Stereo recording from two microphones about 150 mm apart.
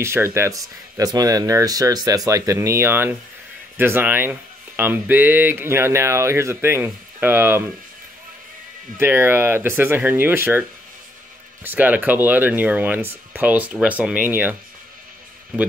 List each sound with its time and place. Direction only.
0.0 s speech: 15° right (ahead or behind)
8.9 s speech: 15° right (ahead or behind)
11.6 s speech: 10° right (ahead or behind)